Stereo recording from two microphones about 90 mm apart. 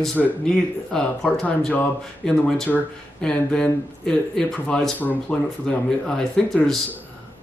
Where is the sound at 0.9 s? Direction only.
5° left (ahead or behind).